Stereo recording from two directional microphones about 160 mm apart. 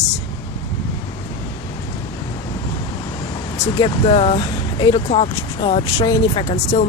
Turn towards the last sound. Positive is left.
turn(degrees=40)  # may be behind; listen again after turning